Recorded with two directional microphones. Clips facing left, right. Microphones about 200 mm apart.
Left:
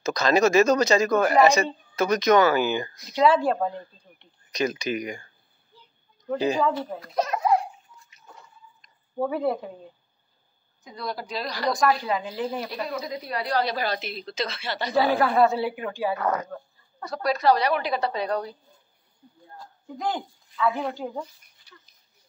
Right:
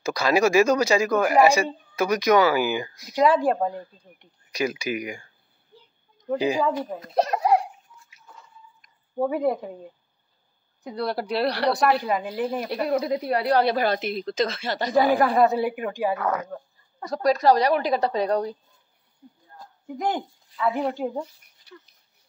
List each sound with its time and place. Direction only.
0.0 s speech: 10° right (ahead or behind)
7.1 s speech: 35° right (ahead or behind)
9.2 s speech: 15° right (ahead or behind)
10.8 s speech: 65° right (ahead or behind)
12.5 s a woman's voice: 55° right (ahead or behind)
15.0 s speech: 15° right (ahead or behind)
17.0 s a woman's voice: 40° right (ahead or behind)
19.6 s a sound: 20° right (ahead or behind)
20.8 s speech: 25° right (ahead or behind)
21.6 s a sound: 65° right (ahead or behind)